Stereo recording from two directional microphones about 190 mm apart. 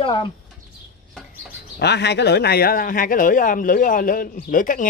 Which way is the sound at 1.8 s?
65° left (ahead or behind).